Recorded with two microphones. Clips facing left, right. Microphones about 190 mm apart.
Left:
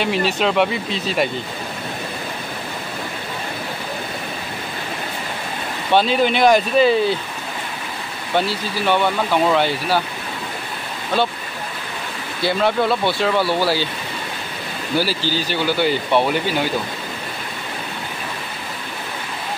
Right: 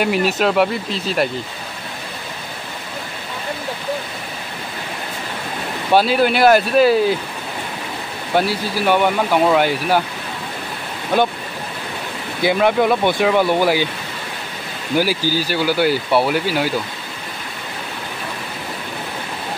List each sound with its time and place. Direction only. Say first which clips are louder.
0.0 s speech: right 2 dB; 10° right (ahead or behind)
5.9 s speech: right 2 dB; 10° right (ahead or behind)
8.4 s speech: right 2 dB; 10° right (ahead or behind)
12.4 s speech: right 3 dB; 15° right (ahead or behind)
15.0 s speech: right 3 dB; 10° right (ahead or behind)